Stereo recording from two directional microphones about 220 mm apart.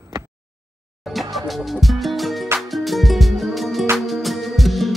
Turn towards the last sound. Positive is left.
turn(degrees=0)  # may be behind; listen again after turning